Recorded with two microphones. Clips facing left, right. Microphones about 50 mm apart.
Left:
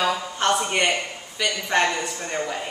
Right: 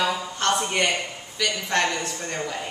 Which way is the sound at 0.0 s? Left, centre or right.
Centre.